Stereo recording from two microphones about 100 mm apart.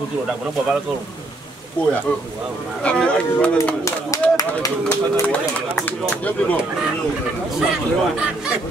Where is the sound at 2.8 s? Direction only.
10° left (ahead or behind).